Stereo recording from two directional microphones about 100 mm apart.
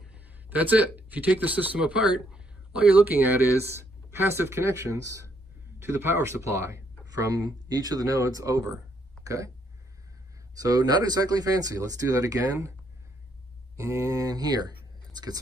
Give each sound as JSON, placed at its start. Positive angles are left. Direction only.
{"t": 0.0, "sound": "speech", "side_deg": -15}
{"t": 10.5, "sound": "speech", "side_deg": -40}
{"t": 13.7, "sound": "speech", "side_deg": -30}